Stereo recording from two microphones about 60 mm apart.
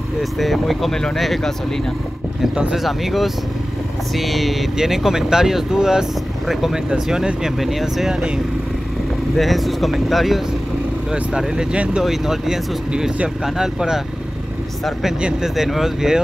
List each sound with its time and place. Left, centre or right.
0.2 s speech: centre
2.7 s speech: centre
9.4 s speech: centre
12.0 s speech: centre
15.1 s speech: centre
15.5 s speech: centre